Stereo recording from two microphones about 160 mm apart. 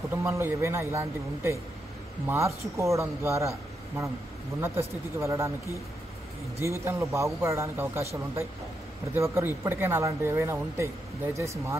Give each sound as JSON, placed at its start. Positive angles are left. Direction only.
{"t": 0.1, "sound": "a man's voice", "side_deg": -15}
{"t": 4.6, "sound": "a man's voice", "side_deg": -15}
{"t": 6.6, "sound": "a man's voice", "side_deg": -15}